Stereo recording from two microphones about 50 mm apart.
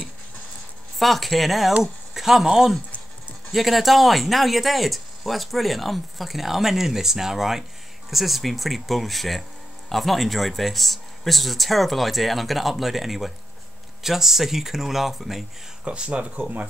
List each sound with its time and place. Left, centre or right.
0.9 s speech: centre
15.8 s speech: right